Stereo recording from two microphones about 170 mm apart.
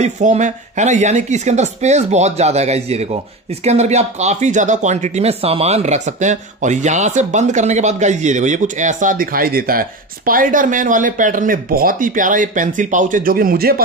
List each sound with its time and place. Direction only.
0.0 s speech: 45° right (ahead or behind); by 13.8 s 60° right (ahead or behind)